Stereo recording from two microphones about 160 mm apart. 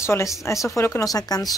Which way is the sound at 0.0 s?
20° left (ahead or behind).